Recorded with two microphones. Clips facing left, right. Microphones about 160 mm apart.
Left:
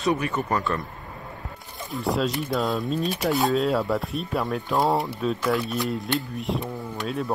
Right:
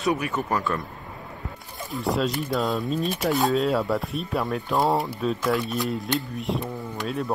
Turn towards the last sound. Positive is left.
turn(degrees=0)  # may be behind; listen again after turning